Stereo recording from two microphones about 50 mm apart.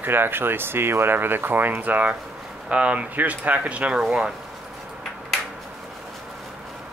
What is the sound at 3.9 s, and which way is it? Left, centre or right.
Speech, centre.